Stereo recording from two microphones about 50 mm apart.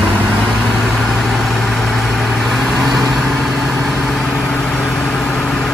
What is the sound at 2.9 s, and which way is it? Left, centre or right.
Vehicle, centre.